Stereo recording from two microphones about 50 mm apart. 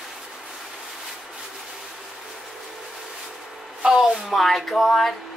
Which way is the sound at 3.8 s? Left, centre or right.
Centre.